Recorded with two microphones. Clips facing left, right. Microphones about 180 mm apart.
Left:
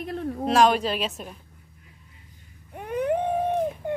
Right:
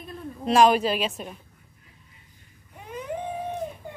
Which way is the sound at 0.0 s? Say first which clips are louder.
Left 8 dB; 75° left (ahead or behind).